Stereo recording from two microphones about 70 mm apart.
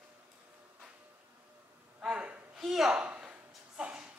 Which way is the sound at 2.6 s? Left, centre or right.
Centre.